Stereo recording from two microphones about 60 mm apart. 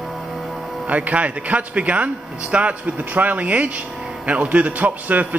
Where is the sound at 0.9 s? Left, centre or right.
Right.